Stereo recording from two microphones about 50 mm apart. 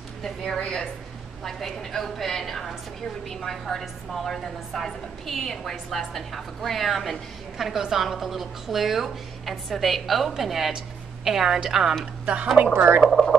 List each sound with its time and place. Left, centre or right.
0.2 s a woman's voice: centre
1.4 s a woman's voice: centre
12.7 s speech: right
13.1 s a woman's voice: centre